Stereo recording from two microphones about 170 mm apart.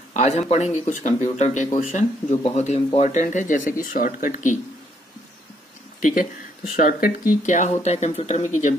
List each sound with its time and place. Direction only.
0.1 s speech: 40° left (ahead or behind)
5.9 s speech: 50° left (ahead or behind)